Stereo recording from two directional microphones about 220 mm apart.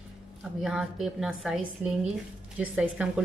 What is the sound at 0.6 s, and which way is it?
A woman's voice, centre (ahead or behind).